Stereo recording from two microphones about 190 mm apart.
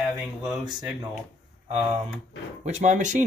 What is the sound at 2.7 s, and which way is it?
Speech, 40° right (ahead or behind).